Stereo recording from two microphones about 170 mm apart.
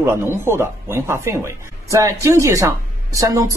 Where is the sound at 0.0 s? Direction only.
15° right (ahead or behind).